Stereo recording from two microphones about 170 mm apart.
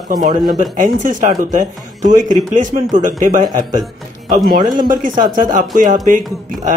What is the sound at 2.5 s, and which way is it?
Speech, 50° right (ahead or behind).